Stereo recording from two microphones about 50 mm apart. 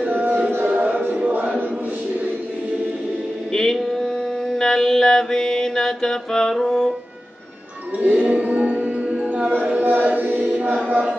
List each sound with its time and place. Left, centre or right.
0.0 s music: right
1.2 s choir: right
3.5 s mantra: centre
8.0 s music: right
9.8 s chant: right
10.0 s chant: right